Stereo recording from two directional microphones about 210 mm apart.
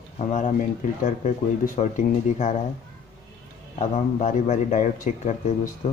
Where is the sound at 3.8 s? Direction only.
35° left (ahead or behind).